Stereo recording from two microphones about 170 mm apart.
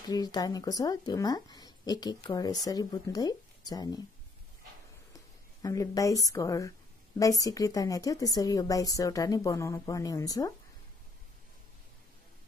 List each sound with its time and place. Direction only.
0.1 s a woman's voice: 20° left (ahead or behind)
5.1 s a woman's voice: 20° left (ahead or behind)